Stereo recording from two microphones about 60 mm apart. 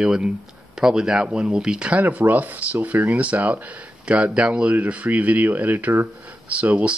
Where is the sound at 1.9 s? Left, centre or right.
Right.